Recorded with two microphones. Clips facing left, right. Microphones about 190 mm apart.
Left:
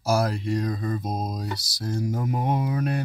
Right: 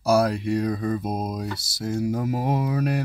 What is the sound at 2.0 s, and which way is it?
Speech, 70° right (ahead or behind).